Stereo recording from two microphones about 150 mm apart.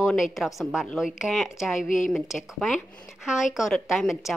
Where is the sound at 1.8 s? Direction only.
60° left (ahead or behind).